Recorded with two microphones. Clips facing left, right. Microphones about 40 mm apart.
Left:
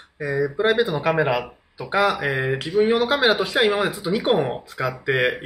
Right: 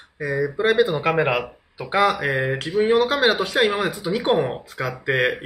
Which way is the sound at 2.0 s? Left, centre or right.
Centre.